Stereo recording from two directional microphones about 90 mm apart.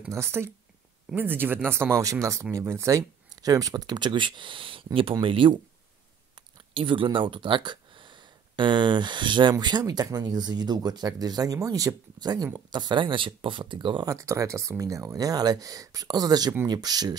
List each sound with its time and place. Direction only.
0.1 s speech: 30° right (ahead or behind)
2.0 s speech: 35° right (ahead or behind); by 5.6 s 75° right (ahead or behind)
6.7 s speech: 70° right (ahead or behind)
14.0 s speech: 35° right (ahead or behind)